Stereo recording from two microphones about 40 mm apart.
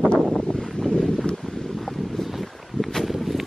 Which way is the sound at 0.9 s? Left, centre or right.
Left.